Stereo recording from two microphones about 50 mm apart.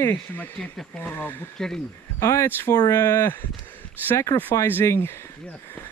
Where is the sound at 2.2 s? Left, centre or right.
Left.